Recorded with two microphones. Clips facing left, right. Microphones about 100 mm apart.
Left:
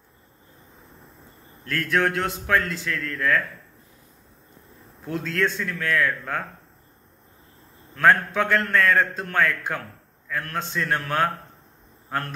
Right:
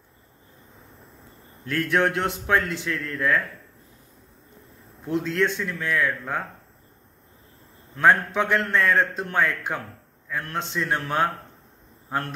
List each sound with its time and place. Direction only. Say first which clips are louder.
1.6 s a man's voice: right 1 dB; 15° right (ahead or behind)
5.0 s a man's voice: right 2 dB; 15° right (ahead or behind)
7.9 s a man's voice: even; 15° right (ahead or behind)